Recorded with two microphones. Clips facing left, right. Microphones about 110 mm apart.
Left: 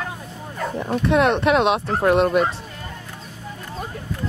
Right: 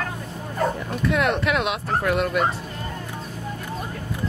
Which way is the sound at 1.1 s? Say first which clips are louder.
Left 5 dB; 25° left (ahead or behind).